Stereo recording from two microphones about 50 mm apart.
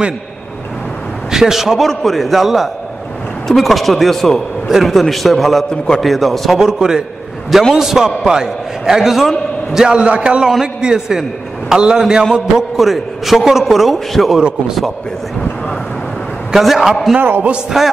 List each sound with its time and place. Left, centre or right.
1.3 s a man's voice: centre
5.7 s a man's voice: centre
6.0 s a man's voice: centre
6.6 s a man's voice: centre
9.8 s a man's voice: right
12.3 s a man's voice: centre
16.5 s a man's voice: centre
17.2 s speech: right
17.8 s a man's voice: centre